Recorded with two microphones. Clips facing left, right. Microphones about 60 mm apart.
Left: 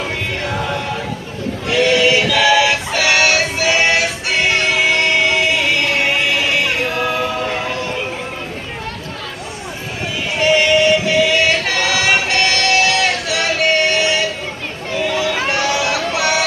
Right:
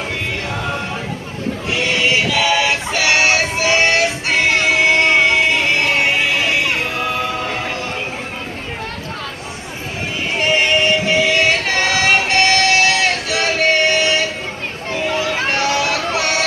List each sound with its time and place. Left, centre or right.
1.7 s synthetic singing: right
3.1 s music: right
10.3 s choir: right
14.9 s music: right